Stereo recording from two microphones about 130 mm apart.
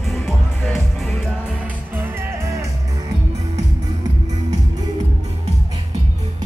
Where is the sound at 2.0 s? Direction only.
25° right (ahead or behind).